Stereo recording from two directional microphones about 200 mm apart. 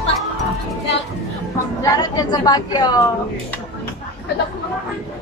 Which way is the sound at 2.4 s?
20° left (ahead or behind).